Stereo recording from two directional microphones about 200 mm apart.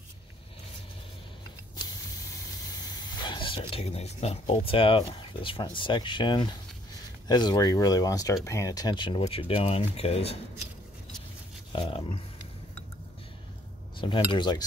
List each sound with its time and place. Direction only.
2.9 s speech: 20° left (ahead or behind)
11.7 s speech: 25° left (ahead or behind)
13.9 s speech: 25° left (ahead or behind)